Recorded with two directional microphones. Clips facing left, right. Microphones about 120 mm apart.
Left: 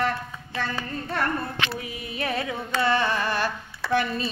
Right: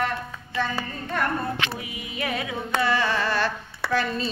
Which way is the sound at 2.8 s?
25° left (ahead or behind).